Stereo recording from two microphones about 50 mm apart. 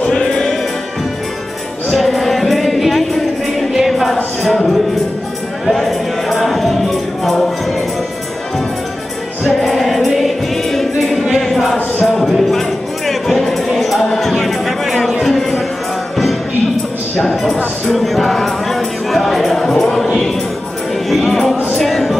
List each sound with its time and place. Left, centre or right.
0.0 s music: centre
1.9 s music: centre
9.5 s music: centre
17.2 s music: centre
21.1 s music: centre